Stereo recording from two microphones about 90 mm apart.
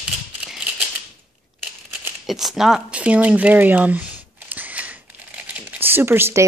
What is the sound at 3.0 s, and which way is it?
Speech, 15° right (ahead or behind).